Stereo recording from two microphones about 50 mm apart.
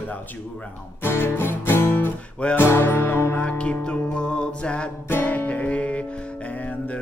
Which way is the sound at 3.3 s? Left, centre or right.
Left.